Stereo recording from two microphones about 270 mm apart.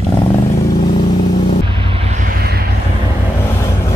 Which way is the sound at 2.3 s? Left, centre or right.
Right.